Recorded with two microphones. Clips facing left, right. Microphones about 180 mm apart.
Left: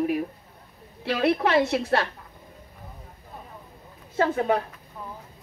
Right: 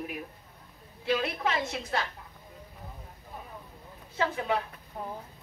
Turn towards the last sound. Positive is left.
turn(degrees=45)  # may be behind; listen again after turning